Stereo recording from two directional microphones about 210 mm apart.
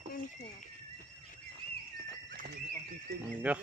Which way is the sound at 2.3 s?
45° right (ahead or behind).